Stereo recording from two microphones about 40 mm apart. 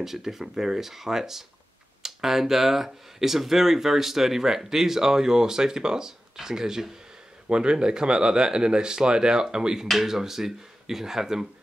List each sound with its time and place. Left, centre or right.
0.0 s speech: centre